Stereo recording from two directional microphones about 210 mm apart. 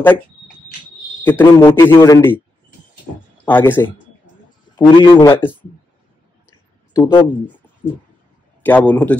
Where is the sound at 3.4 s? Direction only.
10° left (ahead or behind).